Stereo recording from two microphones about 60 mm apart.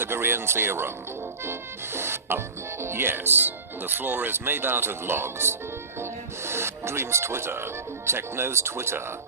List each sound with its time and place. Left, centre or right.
0.0 s speech: right